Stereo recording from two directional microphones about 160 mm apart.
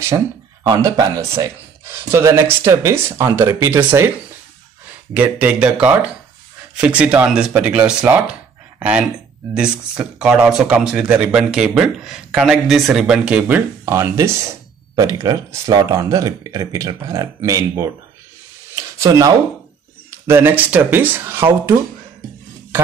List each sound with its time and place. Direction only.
0.7 s speech: 20° right (ahead or behind)
5.1 s speech: 10° right (ahead or behind)